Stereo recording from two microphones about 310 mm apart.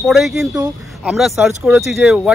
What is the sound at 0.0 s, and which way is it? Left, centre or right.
Speech, centre.